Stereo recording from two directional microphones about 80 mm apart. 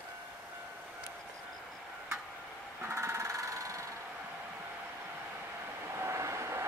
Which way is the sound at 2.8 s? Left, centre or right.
Right.